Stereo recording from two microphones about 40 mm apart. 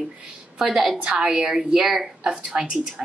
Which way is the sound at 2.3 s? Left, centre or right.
Right.